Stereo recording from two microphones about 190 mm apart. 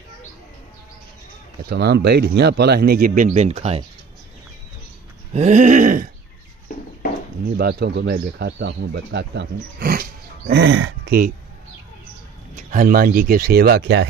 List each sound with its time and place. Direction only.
1.7 s speech: 60° right (ahead or behind); by 3.8 s 35° right (ahead or behind)
5.3 s a sound: 35° right (ahead or behind)
7.4 s speech: 55° right (ahead or behind)
10.6 s speech: 80° right
12.5 s speech: 45° right (ahead or behind); by 14.0 s 65° right (ahead or behind)